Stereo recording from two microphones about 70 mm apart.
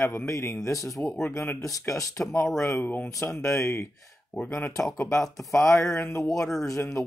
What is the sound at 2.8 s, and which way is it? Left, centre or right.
Speech, left.